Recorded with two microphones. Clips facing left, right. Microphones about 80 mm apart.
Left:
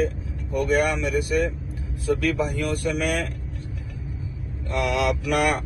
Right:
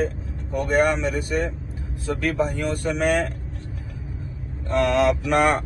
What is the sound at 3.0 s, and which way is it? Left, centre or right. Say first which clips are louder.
Speech: right 4 dB; left.